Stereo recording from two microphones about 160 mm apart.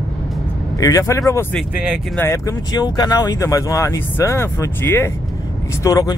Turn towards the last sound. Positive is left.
turn(degrees=20)  # may be behind; listen again after turning